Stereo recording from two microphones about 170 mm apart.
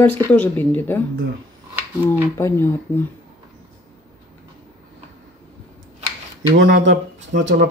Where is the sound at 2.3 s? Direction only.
15° left (ahead or behind).